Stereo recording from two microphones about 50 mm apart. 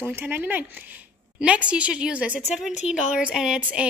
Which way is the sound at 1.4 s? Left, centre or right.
Right.